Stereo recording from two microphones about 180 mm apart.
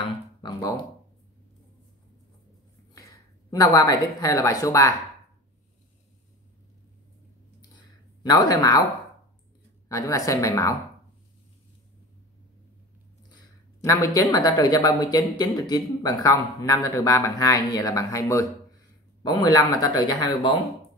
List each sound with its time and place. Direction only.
0.0 s a sound: 25° left (ahead or behind)
2.9 s speech: 20° left (ahead or behind)
8.2 s speech: 20° left (ahead or behind)
9.8 s a woman's voice: 20° left (ahead or behind)
13.8 s speech: 20° left (ahead or behind)